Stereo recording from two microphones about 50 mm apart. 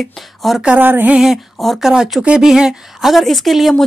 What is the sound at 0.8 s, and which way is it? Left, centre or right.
Music, right.